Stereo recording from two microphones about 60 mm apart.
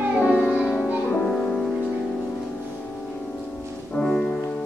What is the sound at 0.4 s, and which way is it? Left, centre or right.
Music, centre.